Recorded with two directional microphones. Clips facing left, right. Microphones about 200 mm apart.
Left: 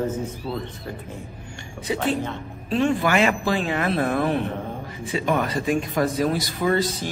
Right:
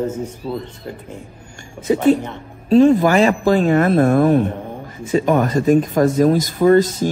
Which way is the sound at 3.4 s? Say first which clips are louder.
Right 9 dB; 45° right (ahead or behind).